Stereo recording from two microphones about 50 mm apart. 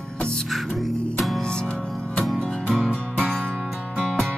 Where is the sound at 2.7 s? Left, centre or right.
Centre.